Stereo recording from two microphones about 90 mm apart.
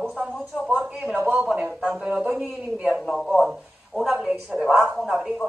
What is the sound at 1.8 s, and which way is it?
A woman's voice, 5° right (ahead or behind).